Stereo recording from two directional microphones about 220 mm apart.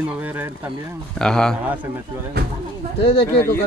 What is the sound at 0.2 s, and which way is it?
Speech, 10° right (ahead or behind).